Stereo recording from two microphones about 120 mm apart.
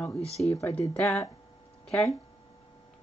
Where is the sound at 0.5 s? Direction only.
25° left (ahead or behind).